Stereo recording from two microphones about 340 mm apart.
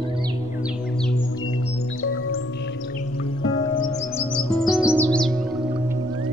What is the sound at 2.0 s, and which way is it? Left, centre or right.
Music, left.